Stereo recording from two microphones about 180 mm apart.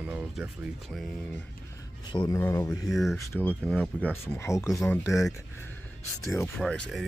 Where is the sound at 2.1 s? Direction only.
25° left (ahead or behind).